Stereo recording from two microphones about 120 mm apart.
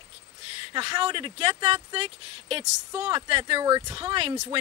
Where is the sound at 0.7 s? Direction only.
45° right (ahead or behind).